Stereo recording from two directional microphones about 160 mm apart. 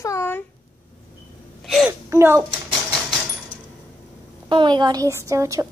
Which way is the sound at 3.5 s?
50° right (ahead or behind).